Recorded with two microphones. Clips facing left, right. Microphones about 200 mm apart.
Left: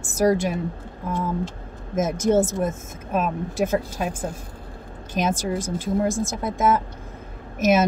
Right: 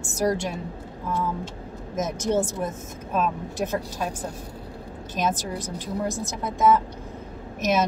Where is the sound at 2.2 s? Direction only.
50° left (ahead or behind).